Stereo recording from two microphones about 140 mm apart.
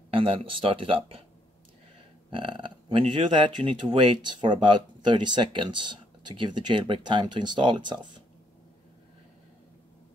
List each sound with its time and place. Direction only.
0.1 s speech: 40° right (ahead or behind)
2.3 s speech: 35° right (ahead or behind)